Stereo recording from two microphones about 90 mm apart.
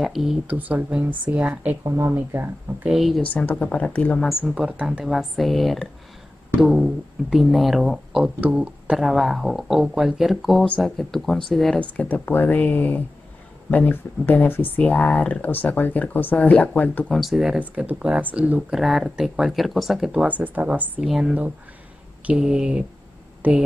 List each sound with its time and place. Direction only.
0.0 s speech: centre (ahead or behind)
0.5 s speech: 20° right (ahead or behind)
1.9 s speech: 30° right (ahead or behind)
2.1 s speech: 20° right (ahead or behind)
2.9 s speech: centre (ahead or behind)
3.2 s speech: 15° left (ahead or behind)
4.6 s speech: 10° right (ahead or behind)
5.0 s speech: centre (ahead or behind)
8.4 s speech: 15° right (ahead or behind); by 11.8 s 5° left (ahead or behind)
11.8 s speech: 20° left (ahead or behind)
17.1 s speech: centre (ahead or behind)
17.6 s speech: 15° right (ahead or behind)
18.8 s speech: centre (ahead or behind); by 23.6 s 15° right (ahead or behind)